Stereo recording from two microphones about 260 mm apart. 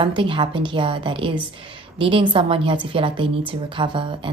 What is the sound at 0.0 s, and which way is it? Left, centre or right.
A woman's voice, centre.